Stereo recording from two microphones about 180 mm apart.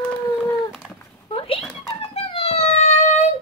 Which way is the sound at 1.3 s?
30° left (ahead or behind).